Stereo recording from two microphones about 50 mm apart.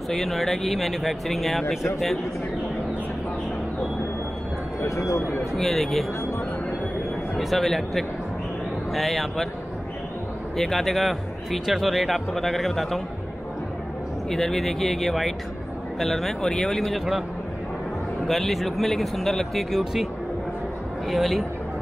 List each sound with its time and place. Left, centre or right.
0.1 s speech: centre
4.8 s speech: left
5.6 s speech: centre
7.4 s speech: centre
10.6 s speech: centre
14.3 s speech: centre
18.2 s speech: centre
19.8 s speech: centre
21.1 s speech: centre